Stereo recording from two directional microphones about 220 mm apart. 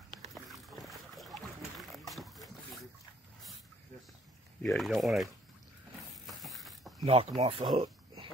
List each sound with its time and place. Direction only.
0.3 s boat: centre (ahead or behind)
4.6 s speech: centre (ahead or behind)
5.9 s a sound: centre (ahead or behind)
7.0 s speech: 25° right (ahead or behind)